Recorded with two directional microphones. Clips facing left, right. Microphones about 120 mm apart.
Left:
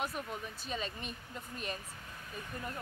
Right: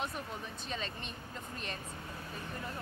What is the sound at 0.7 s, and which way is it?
Speech, 5° left (ahead or behind).